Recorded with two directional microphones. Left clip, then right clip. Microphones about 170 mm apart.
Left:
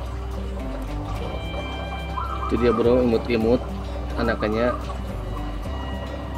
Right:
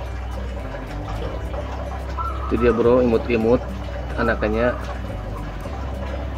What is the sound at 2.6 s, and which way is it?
Speech, 15° left (ahead or behind).